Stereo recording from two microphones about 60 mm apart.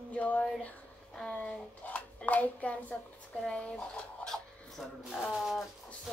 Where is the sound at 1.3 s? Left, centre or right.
Left.